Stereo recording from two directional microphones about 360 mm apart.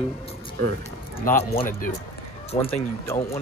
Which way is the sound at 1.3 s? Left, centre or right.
Centre.